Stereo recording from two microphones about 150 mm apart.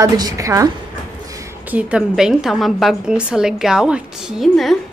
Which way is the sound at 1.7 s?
5° right (ahead or behind).